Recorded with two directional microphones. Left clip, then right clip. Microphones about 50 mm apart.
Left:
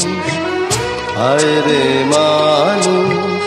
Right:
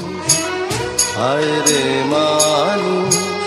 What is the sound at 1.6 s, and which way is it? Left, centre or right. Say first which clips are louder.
Music: left 3 dB; right.